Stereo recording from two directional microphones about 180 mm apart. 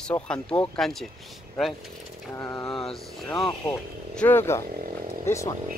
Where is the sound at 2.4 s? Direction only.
15° left (ahead or behind).